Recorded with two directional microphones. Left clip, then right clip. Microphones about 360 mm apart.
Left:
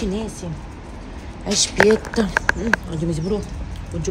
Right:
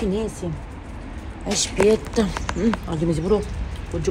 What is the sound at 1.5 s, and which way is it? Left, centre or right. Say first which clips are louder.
Speech: left 3 dB; centre.